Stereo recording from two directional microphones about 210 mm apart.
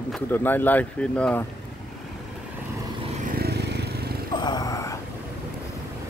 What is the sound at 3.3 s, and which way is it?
Vehicle, 50° right (ahead or behind).